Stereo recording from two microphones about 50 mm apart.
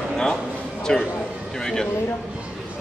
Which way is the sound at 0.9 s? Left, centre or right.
Centre.